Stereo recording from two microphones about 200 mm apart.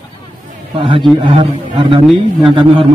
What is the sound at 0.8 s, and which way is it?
A man's voice, 25° right (ahead or behind).